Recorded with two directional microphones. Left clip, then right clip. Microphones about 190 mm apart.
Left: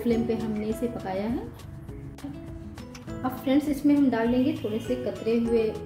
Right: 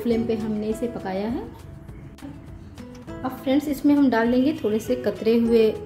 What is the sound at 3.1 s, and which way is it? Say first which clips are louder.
Music: right 2 dB; 10° right (ahead or behind).